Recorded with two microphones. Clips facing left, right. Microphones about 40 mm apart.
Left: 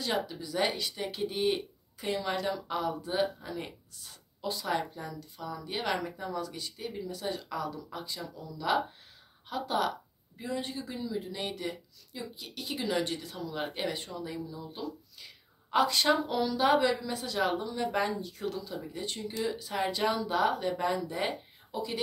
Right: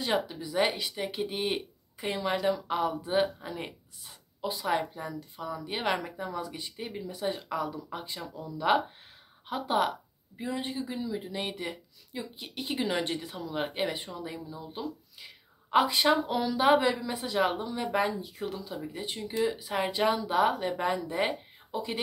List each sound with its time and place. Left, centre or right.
0.0 s speech: centre
3.0 s a woman's voice: right